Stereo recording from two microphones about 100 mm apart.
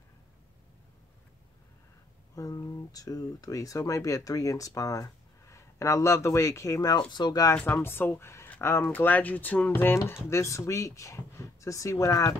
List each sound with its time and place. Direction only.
2.3 s speech: 35° left (ahead or behind)
7.7 s speech: 20° left (ahead or behind)